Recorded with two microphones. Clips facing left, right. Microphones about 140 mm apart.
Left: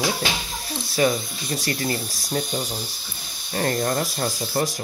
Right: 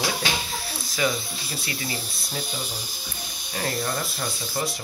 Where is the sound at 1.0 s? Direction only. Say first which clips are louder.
Left 5 dB; 45° left (ahead or behind).